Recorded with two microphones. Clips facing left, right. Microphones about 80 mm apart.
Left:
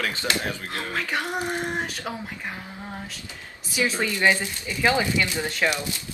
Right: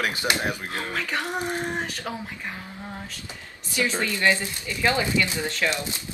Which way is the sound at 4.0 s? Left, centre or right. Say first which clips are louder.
Left 1 dB; centre.